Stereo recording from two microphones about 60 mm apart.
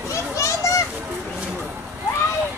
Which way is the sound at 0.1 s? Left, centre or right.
Left.